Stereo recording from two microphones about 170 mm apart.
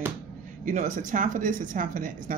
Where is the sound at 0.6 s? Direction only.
45° right (ahead or behind).